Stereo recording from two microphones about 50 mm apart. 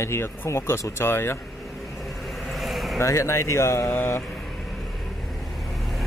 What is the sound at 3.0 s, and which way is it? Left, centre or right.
Speech, left.